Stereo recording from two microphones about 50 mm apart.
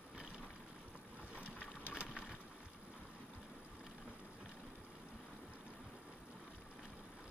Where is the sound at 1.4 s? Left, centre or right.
Left.